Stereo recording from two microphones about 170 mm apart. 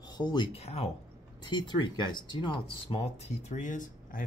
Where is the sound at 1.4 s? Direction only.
25° left (ahead or behind).